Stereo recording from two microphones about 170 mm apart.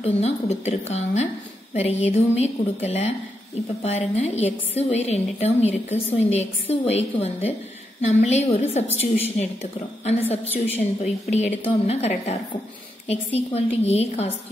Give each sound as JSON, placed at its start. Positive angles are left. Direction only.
{"t": 0.0, "sound": "a woman's voice", "side_deg": 40}
{"t": 8.8, "sound": "a woman's voice", "side_deg": 10}
{"t": 9.6, "sound": "a woman's voice", "side_deg": 40}